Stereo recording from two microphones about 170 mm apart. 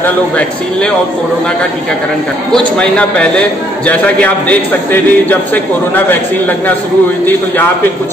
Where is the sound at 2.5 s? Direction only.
5° left (ahead or behind).